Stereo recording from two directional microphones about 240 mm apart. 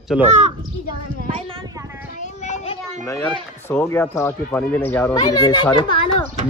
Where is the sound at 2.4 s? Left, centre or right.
Left.